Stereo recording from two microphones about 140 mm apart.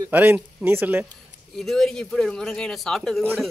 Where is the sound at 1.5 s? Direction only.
Centre (ahead or behind).